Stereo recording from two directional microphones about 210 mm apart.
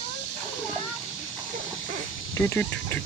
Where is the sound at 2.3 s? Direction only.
10° left (ahead or behind).